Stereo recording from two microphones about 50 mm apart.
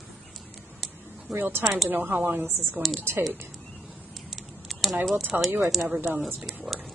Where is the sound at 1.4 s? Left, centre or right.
Right.